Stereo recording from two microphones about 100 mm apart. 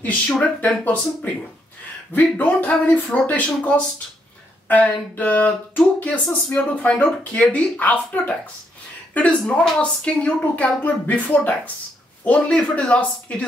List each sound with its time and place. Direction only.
0.4 s a woman's voice: 15° left (ahead or behind)